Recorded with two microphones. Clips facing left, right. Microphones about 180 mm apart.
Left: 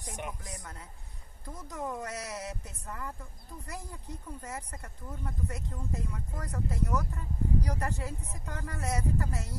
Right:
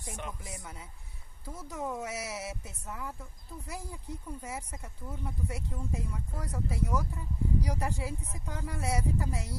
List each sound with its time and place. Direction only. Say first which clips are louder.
0.0 s speech: left 1 dB; 15° left (ahead or behind)
1.4 s speech: right 1 dB; 10° right (ahead or behind)